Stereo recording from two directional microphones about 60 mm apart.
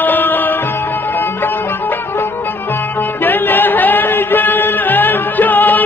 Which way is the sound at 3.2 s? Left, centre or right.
Left.